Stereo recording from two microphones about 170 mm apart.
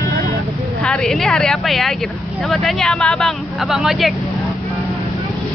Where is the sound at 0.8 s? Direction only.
5° left (ahead or behind).